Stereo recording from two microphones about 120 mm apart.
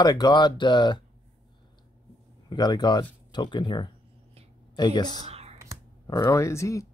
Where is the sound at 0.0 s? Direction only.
35° left (ahead or behind).